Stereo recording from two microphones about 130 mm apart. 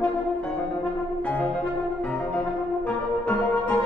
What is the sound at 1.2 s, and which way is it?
French horn, 10° left (ahead or behind).